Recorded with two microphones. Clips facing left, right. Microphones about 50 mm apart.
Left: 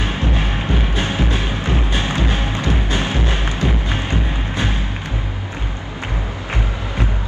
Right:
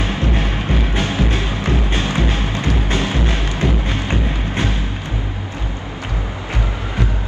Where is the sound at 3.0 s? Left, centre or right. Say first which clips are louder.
Right 1 dB; left.